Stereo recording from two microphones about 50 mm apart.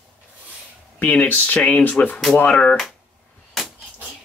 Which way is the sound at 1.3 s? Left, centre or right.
Left.